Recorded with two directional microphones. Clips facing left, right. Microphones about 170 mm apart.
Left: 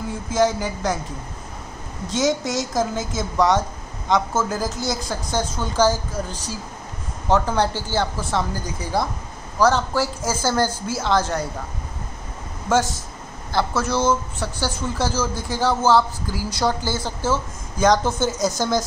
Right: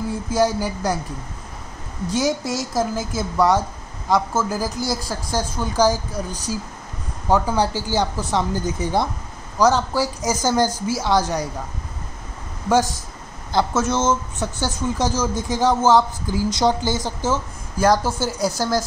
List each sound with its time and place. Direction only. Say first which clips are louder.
0.3 s a woman's voice: even; 10° right (ahead or behind)
2.0 s a woman's voice: even; 10° right (ahead or behind)
12.6 s speech: right 2 dB; 15° right (ahead or behind)
17.7 s a woman's voice: even; 5° right (ahead or behind)